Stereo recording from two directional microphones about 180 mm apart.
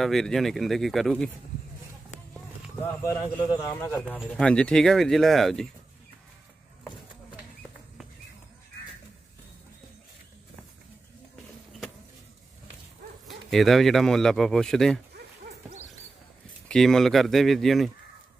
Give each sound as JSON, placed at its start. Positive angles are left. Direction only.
{"t": 0.0, "sound": "speech", "side_deg": 0}
{"t": 3.0, "sound": "a man's voice", "side_deg": 20}
{"t": 4.3, "sound": "speech", "side_deg": 5}
{"t": 13.5, "sound": "speech", "side_deg": 0}
{"t": 16.6, "sound": "speech", "side_deg": 5}